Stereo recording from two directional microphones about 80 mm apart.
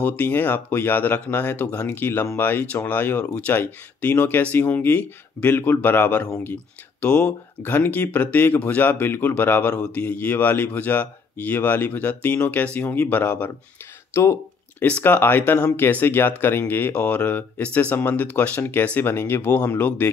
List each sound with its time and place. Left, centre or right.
0.0 s speech: left
14.8 s speech: centre